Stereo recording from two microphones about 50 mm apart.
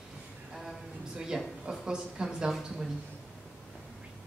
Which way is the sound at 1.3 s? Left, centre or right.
Centre.